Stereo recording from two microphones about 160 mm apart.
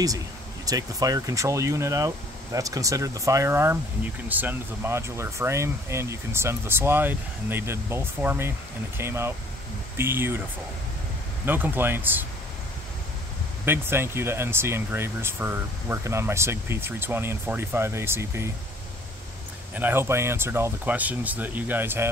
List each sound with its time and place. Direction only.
0.7 s speech: 20° right (ahead or behind)
11.4 s speech: 15° right (ahead or behind)
13.7 s speech: 15° right (ahead or behind)
19.7 s speech: 15° right (ahead or behind)